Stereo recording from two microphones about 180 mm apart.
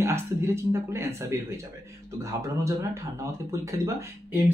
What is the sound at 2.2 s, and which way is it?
Speech, 15° right (ahead or behind).